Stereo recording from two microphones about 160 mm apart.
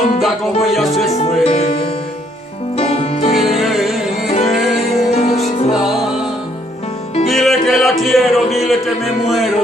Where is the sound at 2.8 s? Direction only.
40° left (ahead or behind).